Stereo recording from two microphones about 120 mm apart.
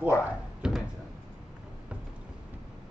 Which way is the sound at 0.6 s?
5° right (ahead or behind).